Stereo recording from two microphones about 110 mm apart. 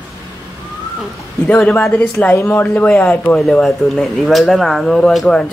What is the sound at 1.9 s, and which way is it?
Speech, 15° left (ahead or behind).